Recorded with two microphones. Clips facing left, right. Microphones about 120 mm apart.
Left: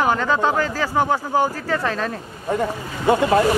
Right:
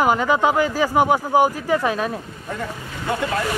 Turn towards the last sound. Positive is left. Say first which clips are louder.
# left 7 dB
turn(degrees=25)  # may be behind; listen again after turning